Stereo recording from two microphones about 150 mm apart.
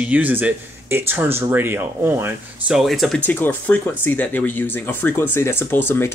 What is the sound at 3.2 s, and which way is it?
Speech, 15° left (ahead or behind).